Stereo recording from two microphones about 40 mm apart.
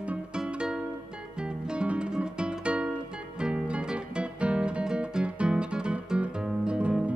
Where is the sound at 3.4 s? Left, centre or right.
Right.